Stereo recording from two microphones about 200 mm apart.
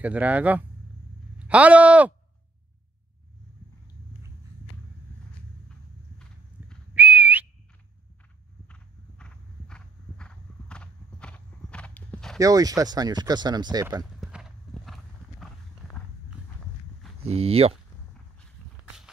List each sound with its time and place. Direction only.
0.0 s speech: 5° right (ahead or behind)
6.9 s whistling: 10° right (ahead or behind)
8.6 s horse: 5° left (ahead or behind)
12.4 s speech: 15° right (ahead or behind)
14.2 s horse: centre (ahead or behind)
17.2 s speech: 30° right (ahead or behind)